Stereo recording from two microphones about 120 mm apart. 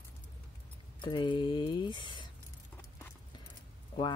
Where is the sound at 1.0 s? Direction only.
40° left (ahead or behind).